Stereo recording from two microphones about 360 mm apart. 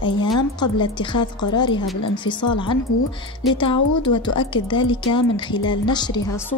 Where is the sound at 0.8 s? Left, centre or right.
Centre.